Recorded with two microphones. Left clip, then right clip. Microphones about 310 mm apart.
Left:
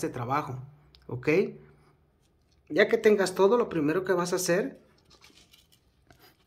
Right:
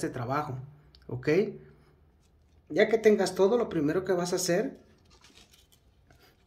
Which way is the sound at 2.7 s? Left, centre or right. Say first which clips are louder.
Left 1 dB; centre.